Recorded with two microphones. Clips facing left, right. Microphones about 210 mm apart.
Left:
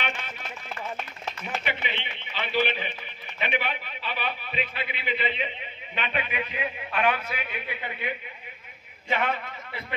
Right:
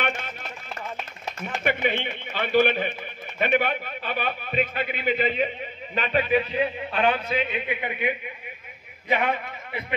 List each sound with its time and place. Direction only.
1.6 s a man's voice: 50° right (ahead or behind); by 8.1 s 15° right (ahead or behind)
9.1 s a man's voice: 15° right (ahead or behind)